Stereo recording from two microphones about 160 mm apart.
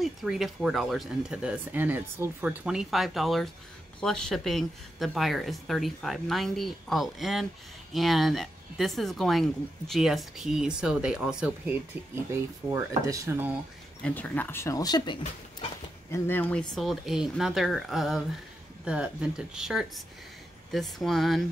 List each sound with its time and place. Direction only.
0.0 s speech: centre (ahead or behind)
12.7 s speech: 20° right (ahead or behind)
14.0 s speech: 10° left (ahead or behind); by 15.1 s 25° left (ahead or behind)
16.1 s speech: 10° left (ahead or behind)